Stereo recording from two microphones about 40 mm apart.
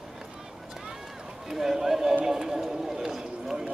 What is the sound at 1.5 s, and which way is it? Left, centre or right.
Speech, centre.